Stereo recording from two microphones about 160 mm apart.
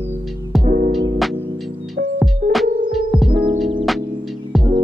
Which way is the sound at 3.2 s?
35° right (ahead or behind).